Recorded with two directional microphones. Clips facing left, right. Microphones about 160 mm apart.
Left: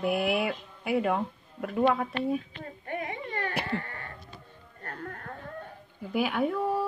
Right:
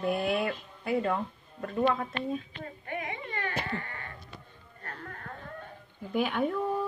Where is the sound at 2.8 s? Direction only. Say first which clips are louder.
Left 3 dB; 40° left (ahead or behind).